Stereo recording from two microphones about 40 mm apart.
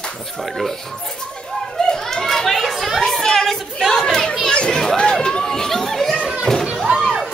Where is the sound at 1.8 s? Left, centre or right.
Centre.